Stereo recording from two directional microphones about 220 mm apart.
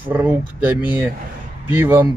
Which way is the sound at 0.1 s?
10° right (ahead or behind).